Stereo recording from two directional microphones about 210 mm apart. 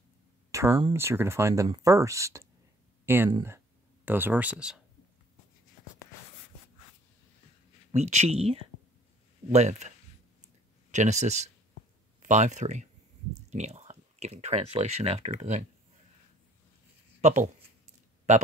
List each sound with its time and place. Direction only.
0.5 s speech: 15° right (ahead or behind)
7.9 s speech: 35° right (ahead or behind)
17.2 s speech: 35° right (ahead or behind)